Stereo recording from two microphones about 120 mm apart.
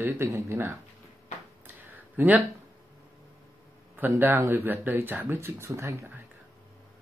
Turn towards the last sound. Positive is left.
turn(degrees=-25)  # may be behind; listen again after turning